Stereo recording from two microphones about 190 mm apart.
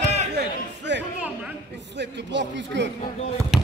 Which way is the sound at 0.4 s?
65° right (ahead or behind).